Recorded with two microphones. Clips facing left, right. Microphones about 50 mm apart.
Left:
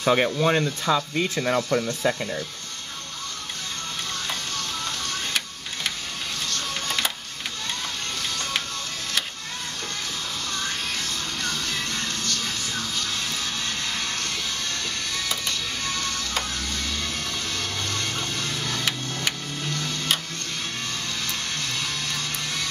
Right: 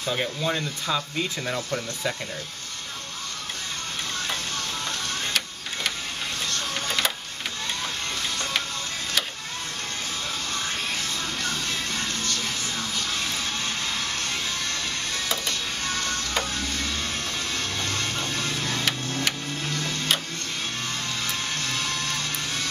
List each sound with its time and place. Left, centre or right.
0.0 s speech: left
0.9 s speech: left
11.4 s music: centre
17.6 s music: right